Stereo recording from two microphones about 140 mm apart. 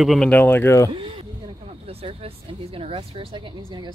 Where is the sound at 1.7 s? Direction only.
45° right (ahead or behind).